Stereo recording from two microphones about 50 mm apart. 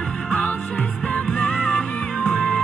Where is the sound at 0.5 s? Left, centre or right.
Left.